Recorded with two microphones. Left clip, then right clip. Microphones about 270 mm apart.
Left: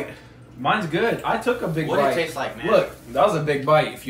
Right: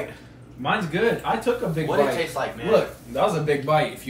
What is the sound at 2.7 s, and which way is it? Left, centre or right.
A man's voice, centre.